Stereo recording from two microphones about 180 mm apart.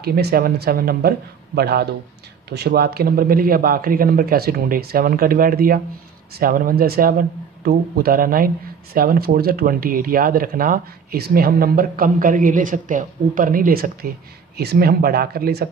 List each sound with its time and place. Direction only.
0.0 s speech: 60° right (ahead or behind)